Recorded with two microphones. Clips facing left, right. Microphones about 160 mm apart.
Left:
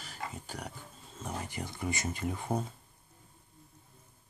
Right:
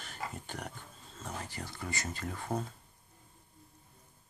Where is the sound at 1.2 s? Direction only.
15° left (ahead or behind).